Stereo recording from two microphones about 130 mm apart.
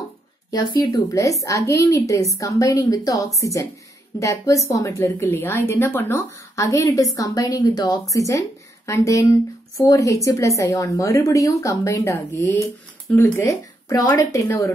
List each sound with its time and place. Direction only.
0.5 s a woman's voice: 30° left (ahead or behind)